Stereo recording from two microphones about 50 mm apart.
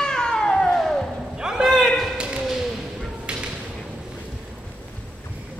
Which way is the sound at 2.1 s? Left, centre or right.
Centre.